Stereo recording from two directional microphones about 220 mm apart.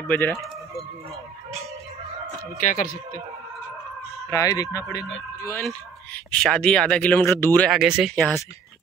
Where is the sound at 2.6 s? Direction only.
35° left (ahead or behind).